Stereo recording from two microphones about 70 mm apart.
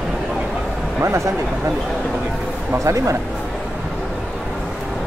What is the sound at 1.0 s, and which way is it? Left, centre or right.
Speech, right.